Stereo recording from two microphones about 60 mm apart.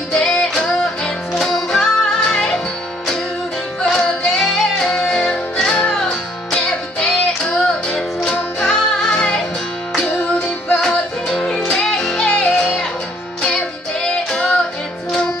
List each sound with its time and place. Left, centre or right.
0.1 s music: centre
3.8 s music: centre
10.9 s music: centre